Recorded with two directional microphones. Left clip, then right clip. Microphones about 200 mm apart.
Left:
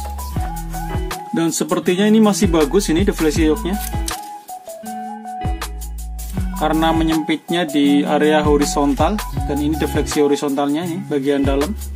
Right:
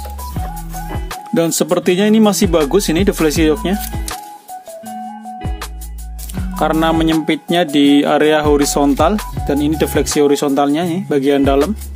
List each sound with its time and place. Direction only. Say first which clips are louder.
1.3 s speech: right 5 dB; 50° right (ahead or behind)
6.6 s speech: right 3 dB; 45° right (ahead or behind)